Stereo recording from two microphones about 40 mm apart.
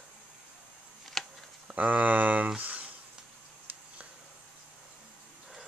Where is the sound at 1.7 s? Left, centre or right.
Right.